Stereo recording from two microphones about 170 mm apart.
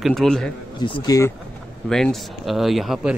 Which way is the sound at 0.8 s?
30° left (ahead or behind).